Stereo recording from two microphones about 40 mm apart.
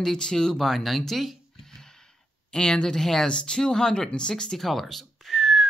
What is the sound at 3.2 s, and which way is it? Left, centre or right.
Speech, left.